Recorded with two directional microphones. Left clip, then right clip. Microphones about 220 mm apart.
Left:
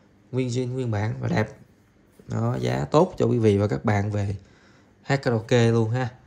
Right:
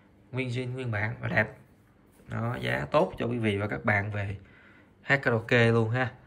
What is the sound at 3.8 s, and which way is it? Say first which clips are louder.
Speech: left 1 dB; 15° left (ahead or behind).